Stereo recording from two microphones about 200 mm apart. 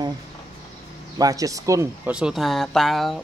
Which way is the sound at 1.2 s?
20° right (ahead or behind).